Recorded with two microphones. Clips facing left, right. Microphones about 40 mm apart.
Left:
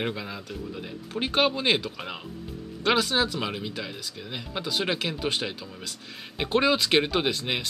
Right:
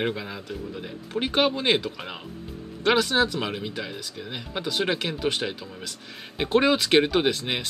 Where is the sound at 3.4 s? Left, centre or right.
Centre.